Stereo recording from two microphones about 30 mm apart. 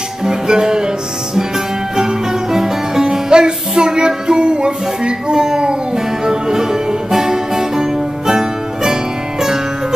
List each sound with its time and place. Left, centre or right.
0.2 s music: right
2.0 s music: centre